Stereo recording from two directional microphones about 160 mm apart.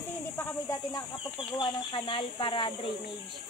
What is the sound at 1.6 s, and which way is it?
Speech, 30° left (ahead or behind).